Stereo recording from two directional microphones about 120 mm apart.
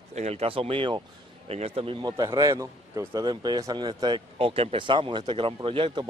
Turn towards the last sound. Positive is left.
turn(degrees=-40)  # may be behind; listen again after turning